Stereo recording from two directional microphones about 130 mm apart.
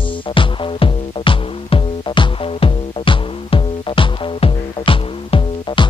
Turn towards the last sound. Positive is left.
turn(degrees=45)  # may be behind; listen again after turning